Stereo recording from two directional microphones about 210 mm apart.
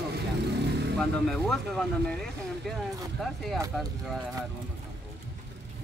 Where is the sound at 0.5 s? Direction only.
55° right (ahead or behind).